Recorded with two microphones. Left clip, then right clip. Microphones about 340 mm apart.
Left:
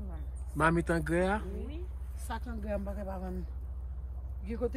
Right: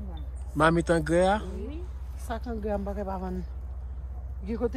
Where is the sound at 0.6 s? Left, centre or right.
Centre.